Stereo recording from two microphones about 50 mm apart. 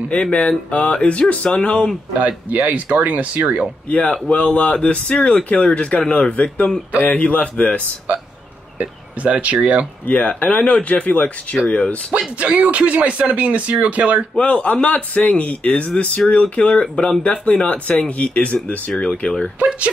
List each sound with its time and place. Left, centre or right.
0.1 s speech: left
2.1 s speech: right
3.9 s speech: left
8.7 s speech: right
10.0 s speech: left
12.4 s speech: right
14.3 s speech: left
19.6 s speech: right